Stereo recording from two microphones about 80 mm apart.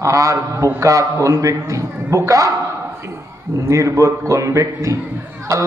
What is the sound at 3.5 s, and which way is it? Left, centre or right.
A man's voice, right.